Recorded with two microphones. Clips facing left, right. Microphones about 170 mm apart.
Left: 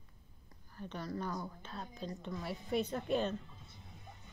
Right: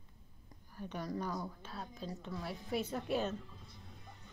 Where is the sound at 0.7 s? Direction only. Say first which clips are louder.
Right 1 dB; 10° right (ahead or behind).